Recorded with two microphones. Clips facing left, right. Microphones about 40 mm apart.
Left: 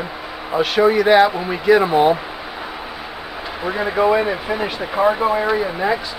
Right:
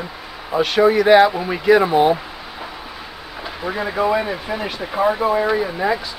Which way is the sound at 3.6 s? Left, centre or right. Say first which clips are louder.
Left 3 dB; centre.